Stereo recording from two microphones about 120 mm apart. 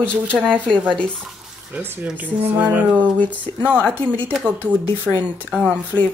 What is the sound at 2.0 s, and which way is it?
Music, 15° right (ahead or behind).